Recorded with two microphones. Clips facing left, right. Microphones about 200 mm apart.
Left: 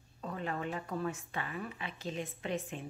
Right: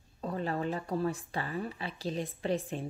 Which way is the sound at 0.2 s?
35° right (ahead or behind).